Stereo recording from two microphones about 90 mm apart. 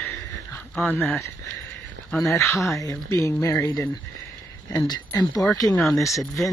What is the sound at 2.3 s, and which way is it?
Speech, 30° left (ahead or behind).